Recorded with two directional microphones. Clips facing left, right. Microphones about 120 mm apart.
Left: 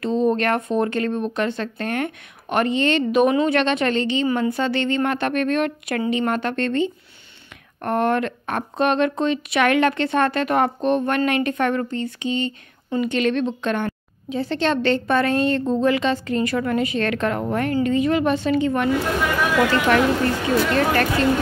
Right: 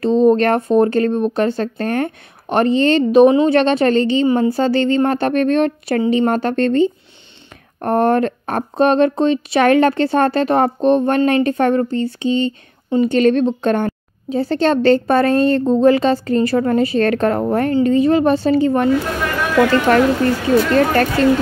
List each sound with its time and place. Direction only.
0.0 s speech: 35° right (ahead or behind)
19.9 s speech: 40° right (ahead or behind)